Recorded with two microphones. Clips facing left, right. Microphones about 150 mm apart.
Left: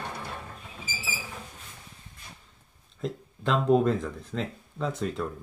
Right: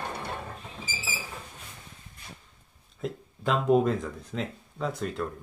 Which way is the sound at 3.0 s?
5° right (ahead or behind).